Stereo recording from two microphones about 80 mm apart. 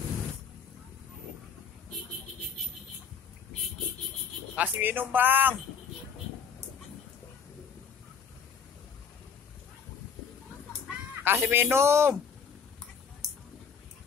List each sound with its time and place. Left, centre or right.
4.6 s speech: right
11.2 s speech: right